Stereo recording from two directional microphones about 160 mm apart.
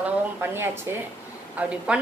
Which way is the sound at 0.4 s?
15° right (ahead or behind).